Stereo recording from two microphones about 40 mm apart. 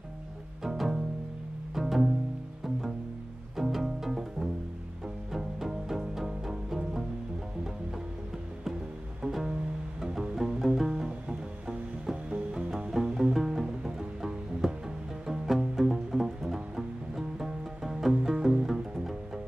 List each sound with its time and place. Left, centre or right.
0.7 s bowed string instrument: centre
1.8 s pizzicato: centre
3.5 s pizzicato: centre
5.3 s music: centre
9.2 s music: centre